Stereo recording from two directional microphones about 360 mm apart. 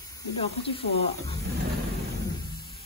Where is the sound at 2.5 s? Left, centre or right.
Right.